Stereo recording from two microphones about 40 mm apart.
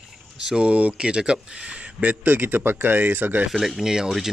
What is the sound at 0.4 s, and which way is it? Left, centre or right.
Speech, centre.